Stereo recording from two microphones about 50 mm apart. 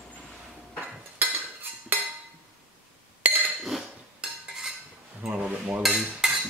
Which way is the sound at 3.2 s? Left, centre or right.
Right.